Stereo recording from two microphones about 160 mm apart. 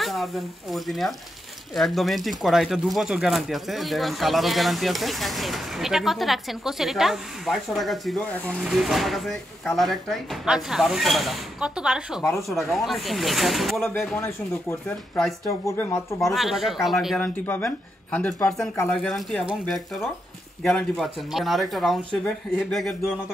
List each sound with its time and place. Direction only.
0.0 s speech: centre (ahead or behind)
15.6 s speech: 20° left (ahead or behind)
16.2 s speech: centre (ahead or behind)
17.2 s speech: 10° left (ahead or behind)